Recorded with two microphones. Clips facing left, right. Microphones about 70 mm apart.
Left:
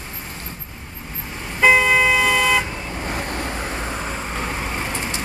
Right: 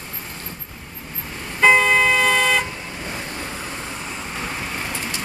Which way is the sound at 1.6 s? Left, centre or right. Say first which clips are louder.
Even; centre.